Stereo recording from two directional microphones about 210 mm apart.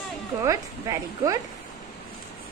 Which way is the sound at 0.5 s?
15° right (ahead or behind).